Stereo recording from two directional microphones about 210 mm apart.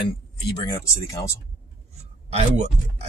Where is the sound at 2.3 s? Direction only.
30° right (ahead or behind).